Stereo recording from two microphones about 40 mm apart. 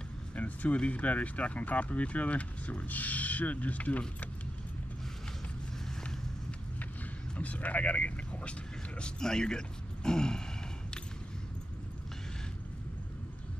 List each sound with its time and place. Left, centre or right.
0.4 s a sound: left
0.7 s speech: left
7.3 s speech: left
9.0 s speech: centre